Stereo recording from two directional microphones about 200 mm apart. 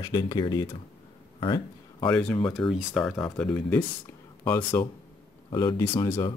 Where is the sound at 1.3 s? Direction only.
25° left (ahead or behind).